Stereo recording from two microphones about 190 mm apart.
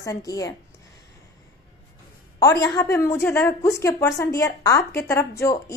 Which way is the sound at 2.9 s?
15° left (ahead or behind).